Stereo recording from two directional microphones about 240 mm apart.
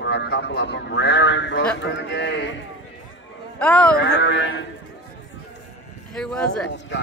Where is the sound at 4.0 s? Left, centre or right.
Left.